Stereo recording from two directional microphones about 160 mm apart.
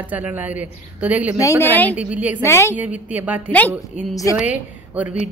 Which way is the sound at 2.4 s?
15° left (ahead or behind).